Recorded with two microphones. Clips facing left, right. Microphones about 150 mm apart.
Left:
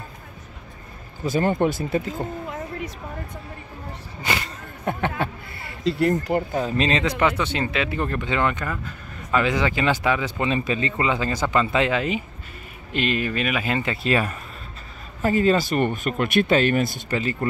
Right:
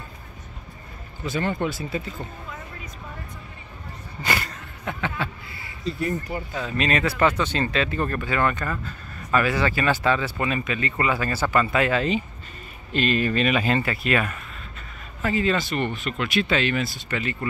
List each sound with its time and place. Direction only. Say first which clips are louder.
1.2 s speech: left 5 dB; 40° left (ahead or behind)
4.2 s a sound: even; 15° left (ahead or behind)
4.9 s speech: left 6 dB; 50° left (ahead or behind)
5.2 s speech: left 4 dB; 65° left (ahead or behind)
6.7 s speech: right 1 dB; 25° left (ahead or behind)
14.0 s speech: left 2 dB; 30° left (ahead or behind); by 17.0 s 50° left (ahead or behind)
17.1 s speech: left 2 dB; 35° left (ahead or behind)